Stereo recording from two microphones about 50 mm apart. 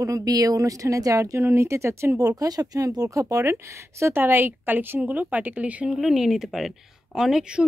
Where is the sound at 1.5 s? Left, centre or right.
Right.